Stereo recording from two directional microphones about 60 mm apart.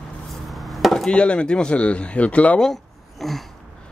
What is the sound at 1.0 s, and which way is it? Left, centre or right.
Speech, centre.